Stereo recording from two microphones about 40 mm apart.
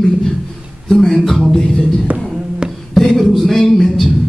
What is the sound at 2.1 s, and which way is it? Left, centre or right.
Speech, right.